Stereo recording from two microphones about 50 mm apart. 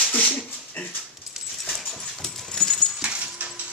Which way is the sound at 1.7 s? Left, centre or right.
Centre.